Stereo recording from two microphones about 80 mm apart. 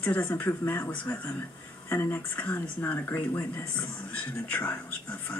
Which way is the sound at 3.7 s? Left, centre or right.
Centre.